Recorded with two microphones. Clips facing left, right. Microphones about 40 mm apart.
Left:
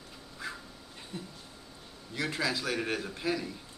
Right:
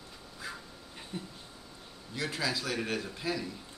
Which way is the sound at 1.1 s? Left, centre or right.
Right.